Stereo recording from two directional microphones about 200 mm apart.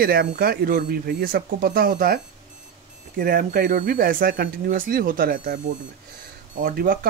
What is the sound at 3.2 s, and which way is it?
Speech, 45° right (ahead or behind).